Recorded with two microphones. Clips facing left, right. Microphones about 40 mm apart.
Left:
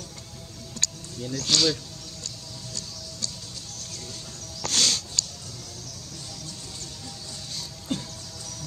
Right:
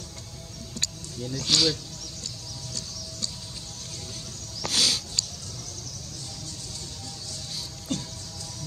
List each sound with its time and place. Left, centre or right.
0.8 s music: centre
1.3 s speech: centre
4.6 s a sound: centre
7.9 s music: centre